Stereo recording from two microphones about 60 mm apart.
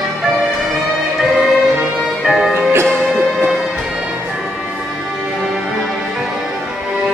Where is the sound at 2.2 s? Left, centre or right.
Centre.